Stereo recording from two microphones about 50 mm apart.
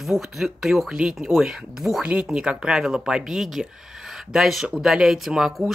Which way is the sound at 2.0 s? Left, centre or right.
Right.